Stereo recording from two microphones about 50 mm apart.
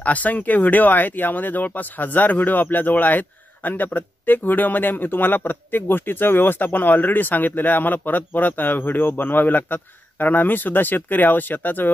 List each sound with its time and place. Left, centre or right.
0.0 s speech: left